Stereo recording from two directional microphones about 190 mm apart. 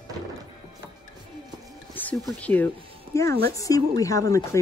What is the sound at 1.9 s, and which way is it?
Speech, 5° left (ahead or behind).